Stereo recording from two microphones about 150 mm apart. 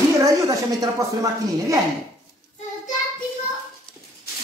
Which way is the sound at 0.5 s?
20° right (ahead or behind).